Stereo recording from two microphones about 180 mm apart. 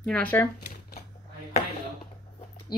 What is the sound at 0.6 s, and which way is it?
Shuffling cards, 60° left (ahead or behind).